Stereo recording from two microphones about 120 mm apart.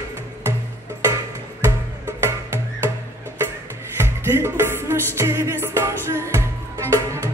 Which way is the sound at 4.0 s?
20° right (ahead or behind).